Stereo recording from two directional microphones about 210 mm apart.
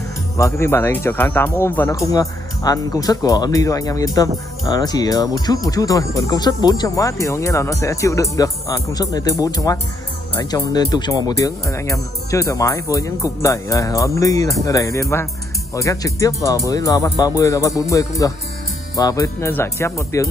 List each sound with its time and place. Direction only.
0.4 s speech: 10° left (ahead or behind)